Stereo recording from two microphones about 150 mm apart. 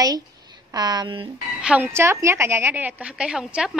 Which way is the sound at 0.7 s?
25° right (ahead or behind).